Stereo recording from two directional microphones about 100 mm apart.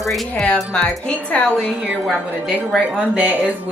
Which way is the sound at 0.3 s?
10° left (ahead or behind).